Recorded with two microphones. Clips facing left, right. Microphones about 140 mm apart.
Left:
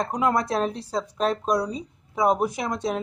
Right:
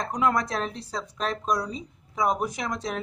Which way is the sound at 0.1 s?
30° left (ahead or behind).